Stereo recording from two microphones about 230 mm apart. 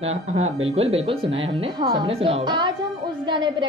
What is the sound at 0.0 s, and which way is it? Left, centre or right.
Speech, right.